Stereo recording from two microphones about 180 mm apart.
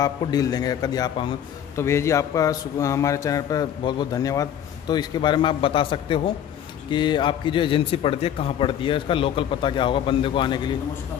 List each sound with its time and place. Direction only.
0.0 s a man's voice: 20° left (ahead or behind)